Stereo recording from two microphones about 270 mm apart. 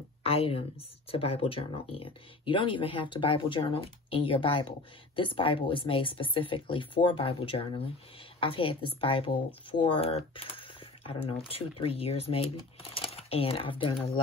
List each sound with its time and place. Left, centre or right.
0.2 s a woman's voice: left